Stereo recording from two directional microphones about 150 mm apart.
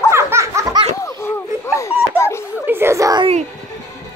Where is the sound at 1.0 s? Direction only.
20° left (ahead or behind).